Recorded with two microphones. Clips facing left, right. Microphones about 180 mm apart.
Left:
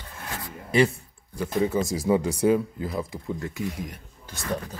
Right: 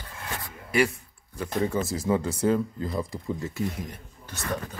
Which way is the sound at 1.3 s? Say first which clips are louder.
Left 3 dB; 10° left (ahead or behind).